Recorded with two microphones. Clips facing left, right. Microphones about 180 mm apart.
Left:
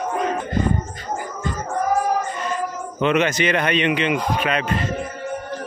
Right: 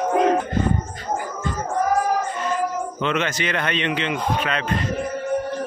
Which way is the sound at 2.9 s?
15° left (ahead or behind).